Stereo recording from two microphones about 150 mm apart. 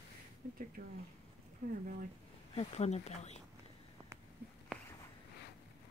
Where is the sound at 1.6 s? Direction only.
60° right (ahead or behind).